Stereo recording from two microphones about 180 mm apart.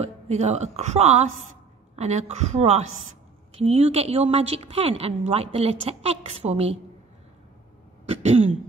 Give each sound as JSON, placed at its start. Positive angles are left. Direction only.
{"t": 0.0, "sound": "a woman's voice", "side_deg": -35}
{"t": 8.1, "sound": "a woman's voice", "side_deg": -40}